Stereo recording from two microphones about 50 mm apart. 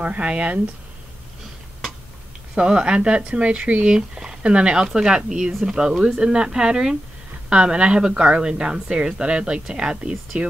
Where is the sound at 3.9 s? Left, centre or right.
Centre.